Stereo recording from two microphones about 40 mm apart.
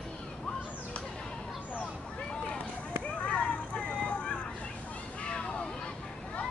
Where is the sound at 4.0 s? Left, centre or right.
Left.